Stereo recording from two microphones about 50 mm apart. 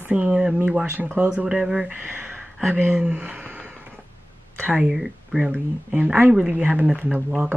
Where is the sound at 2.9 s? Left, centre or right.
Centre.